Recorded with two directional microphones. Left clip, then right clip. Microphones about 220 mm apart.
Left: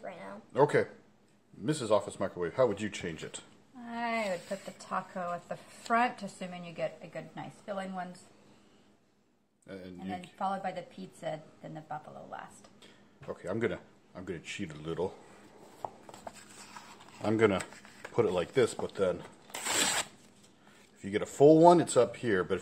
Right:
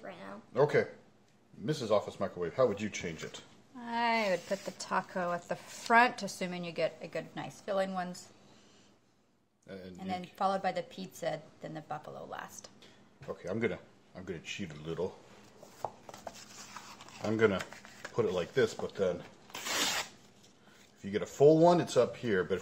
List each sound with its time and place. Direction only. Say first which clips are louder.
0.0 s a sound: left 3 dB; centre (ahead or behind)
0.5 s speech: left 2 dB; 30° left (ahead or behind)
3.8 s speech: right 3 dB; 40° right (ahead or behind)
9.7 s speech: left 1 dB; 20° left (ahead or behind)
10.3 s speech: right 3 dB; 50° right (ahead or behind)
12.8 s speech: left 2 dB; 25° left (ahead or behind)
15.8 s a sound: right 1 dB; 15° right (ahead or behind)
17.3 s speech: left 2 dB; 35° left (ahead or behind)
21.0 s speech: left 2 dB; 30° left (ahead or behind)